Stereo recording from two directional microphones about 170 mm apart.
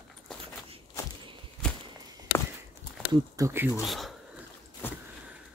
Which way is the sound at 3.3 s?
15° right (ahead or behind).